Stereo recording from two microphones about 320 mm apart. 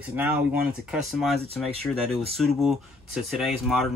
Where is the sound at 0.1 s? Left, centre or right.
Centre.